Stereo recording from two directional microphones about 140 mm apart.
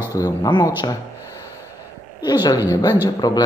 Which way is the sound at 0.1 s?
25° left (ahead or behind).